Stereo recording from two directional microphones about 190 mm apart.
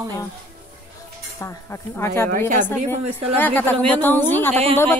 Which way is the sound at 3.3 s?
10° left (ahead or behind).